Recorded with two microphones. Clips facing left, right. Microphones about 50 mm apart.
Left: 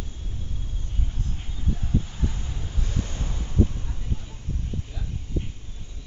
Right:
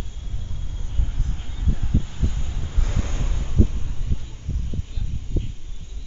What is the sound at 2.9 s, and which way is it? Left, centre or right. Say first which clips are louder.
Waves: right 1 dB; right.